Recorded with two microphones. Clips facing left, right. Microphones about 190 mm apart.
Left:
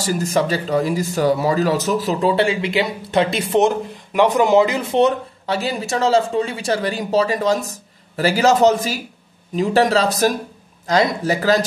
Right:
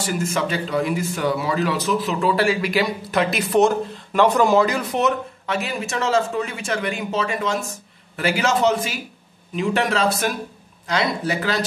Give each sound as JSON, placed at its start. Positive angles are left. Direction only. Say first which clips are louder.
{"t": 0.0, "sound": "speech", "louder": "left 4 dB", "side_deg": 40}